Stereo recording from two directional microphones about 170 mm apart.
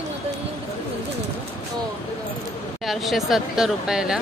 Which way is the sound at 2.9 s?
Centre (ahead or behind).